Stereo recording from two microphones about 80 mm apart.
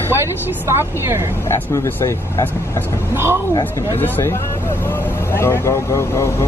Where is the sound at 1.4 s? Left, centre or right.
Left.